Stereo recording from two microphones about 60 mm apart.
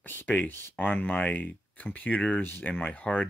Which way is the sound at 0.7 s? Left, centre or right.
Left.